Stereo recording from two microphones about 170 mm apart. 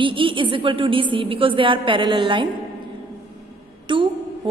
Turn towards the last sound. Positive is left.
turn(degrees=-30)  # may be behind; listen again after turning